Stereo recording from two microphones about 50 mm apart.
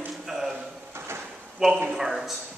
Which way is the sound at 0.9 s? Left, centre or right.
Right.